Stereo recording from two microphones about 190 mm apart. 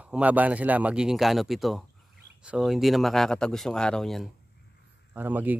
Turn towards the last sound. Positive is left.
turn(degrees=-10)  # may be behind; listen again after turning